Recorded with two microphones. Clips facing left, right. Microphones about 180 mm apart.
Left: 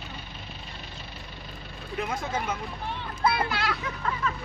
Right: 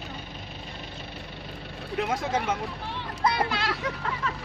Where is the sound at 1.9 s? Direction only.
80° right.